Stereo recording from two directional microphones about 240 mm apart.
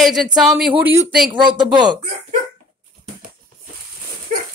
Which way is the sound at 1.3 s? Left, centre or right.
Centre.